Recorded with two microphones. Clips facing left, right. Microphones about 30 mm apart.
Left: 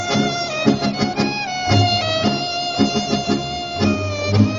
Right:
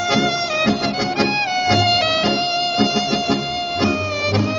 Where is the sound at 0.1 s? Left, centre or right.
Centre.